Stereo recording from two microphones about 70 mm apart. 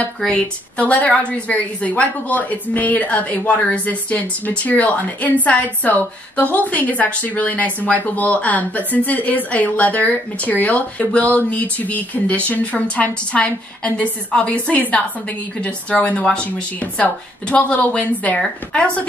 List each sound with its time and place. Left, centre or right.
0.3 s a woman's voice: centre